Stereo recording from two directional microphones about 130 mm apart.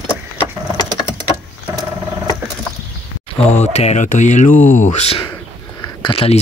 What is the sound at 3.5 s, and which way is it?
Speech, 55° left (ahead or behind).